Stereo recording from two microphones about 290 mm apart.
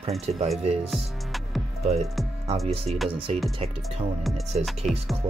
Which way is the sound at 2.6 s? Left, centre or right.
Right.